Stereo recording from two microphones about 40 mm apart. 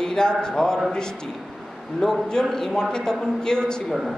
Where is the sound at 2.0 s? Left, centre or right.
Centre.